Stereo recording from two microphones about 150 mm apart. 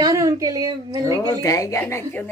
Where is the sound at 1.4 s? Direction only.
20° left (ahead or behind).